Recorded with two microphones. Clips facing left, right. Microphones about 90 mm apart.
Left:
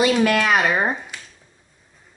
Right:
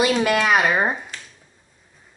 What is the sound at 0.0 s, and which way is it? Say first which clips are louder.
Speech: left 1 dB; 5° right (ahead or behind).